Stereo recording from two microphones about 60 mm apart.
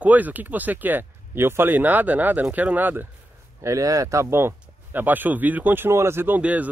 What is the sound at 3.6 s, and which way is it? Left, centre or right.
Speech, right.